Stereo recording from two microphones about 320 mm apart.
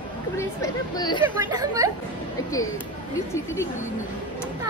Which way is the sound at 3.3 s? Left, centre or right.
Centre.